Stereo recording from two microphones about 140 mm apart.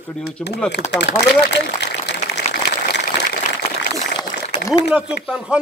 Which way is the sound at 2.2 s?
55° left (ahead or behind).